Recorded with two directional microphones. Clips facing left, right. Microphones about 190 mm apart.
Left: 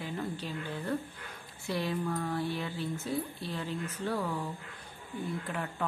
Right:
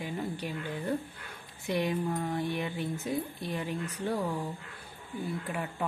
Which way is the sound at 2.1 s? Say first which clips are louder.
Right 1 dB; 20° right (ahead or behind).